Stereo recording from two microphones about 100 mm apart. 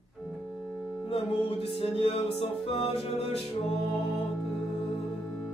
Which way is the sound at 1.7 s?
75° left (ahead or behind).